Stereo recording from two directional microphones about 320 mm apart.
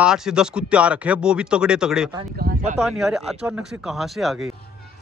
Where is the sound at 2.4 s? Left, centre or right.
Right.